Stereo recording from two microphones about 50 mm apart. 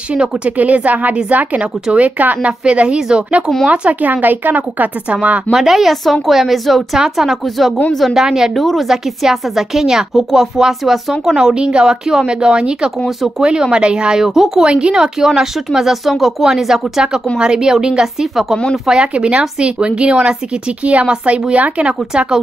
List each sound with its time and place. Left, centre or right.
0.6 s a woman's voice: right
2.6 s a woman's voice: right
4.0 s a woman's voice: right
5.5 s a woman's voice: centre
14.7 s a woman's voice: centre
18.9 s a woman's voice: centre
21.8 s a woman's voice: centre